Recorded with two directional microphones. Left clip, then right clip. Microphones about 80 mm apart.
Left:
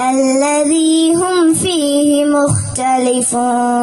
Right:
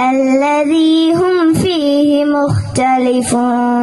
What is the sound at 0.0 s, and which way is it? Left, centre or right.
Female singing, right.